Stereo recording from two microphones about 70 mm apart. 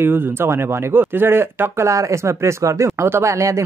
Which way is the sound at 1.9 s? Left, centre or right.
Right.